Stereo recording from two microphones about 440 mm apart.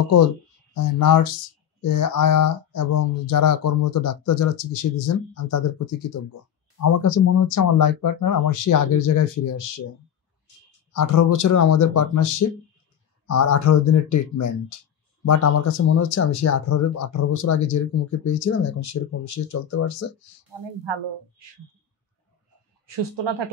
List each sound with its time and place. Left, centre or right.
0.7 s speech: left
10.9 s speech: left
20.8 s speech: right
22.8 s speech: right